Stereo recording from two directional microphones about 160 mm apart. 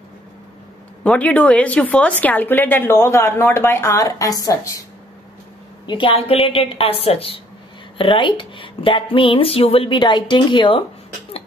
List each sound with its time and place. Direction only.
1.0 s a woman's voice: 10° left (ahead or behind)
5.9 s speech: 30° left (ahead or behind)